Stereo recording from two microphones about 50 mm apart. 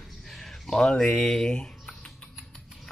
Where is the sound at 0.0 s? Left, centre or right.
Centre.